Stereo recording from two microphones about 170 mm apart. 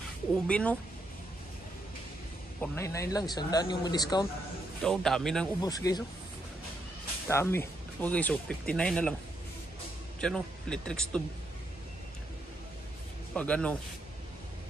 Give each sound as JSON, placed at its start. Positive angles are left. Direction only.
{"t": 0.5, "sound": "speech", "side_deg": 5}
{"t": 2.6, "sound": "speech", "side_deg": 15}
{"t": 4.8, "sound": "speech", "side_deg": 5}
{"t": 5.6, "sound": "speech", "side_deg": 20}
{"t": 7.2, "sound": "speech", "side_deg": 15}
{"t": 10.2, "sound": "speech", "side_deg": 5}
{"t": 13.3, "sound": "speech", "side_deg": 5}